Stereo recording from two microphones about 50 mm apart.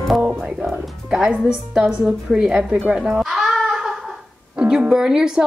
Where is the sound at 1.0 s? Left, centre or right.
Right.